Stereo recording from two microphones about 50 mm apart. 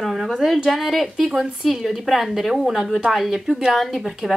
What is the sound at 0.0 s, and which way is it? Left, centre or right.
Speech, centre.